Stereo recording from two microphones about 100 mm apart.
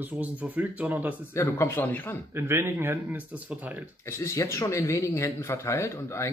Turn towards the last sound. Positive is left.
turn(degrees=30)  # may be behind; listen again after turning